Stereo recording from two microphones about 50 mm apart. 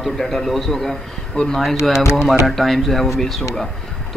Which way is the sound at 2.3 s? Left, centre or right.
Centre.